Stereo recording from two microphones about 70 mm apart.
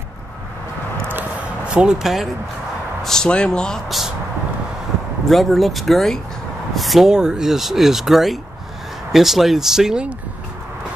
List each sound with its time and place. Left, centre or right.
1.0 s a sound: right
1.6 s speech: centre
3.0 s speech: centre
5.3 s speech: centre